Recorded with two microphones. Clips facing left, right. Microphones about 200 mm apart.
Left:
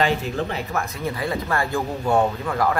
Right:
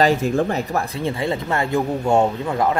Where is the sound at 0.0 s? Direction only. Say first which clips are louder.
Right 5 dB; 45° right (ahead or behind).